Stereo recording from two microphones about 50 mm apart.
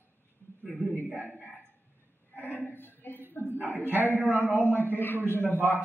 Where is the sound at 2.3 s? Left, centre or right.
Left.